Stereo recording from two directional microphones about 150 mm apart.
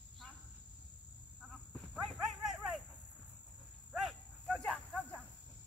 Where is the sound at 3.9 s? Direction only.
Centre (ahead or behind).